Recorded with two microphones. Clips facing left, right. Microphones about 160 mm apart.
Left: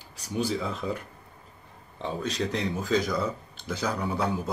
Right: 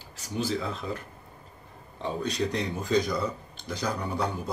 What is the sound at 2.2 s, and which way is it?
Speech, centre (ahead or behind).